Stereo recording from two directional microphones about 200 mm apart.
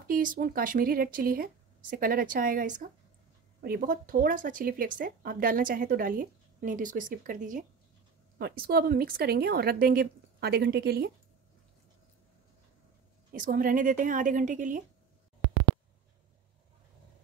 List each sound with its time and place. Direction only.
0.0 s speech: 45° right (ahead or behind)
8.4 s speech: 50° right (ahead or behind)
13.3 s a woman's voice: 45° right (ahead or behind)